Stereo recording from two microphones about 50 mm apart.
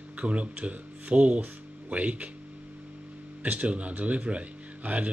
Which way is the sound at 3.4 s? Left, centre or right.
Right.